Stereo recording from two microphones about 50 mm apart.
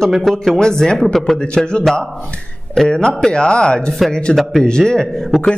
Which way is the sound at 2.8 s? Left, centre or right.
Centre.